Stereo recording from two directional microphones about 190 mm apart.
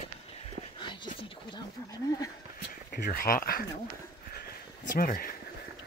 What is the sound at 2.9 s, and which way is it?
Speech, 55° left (ahead or behind).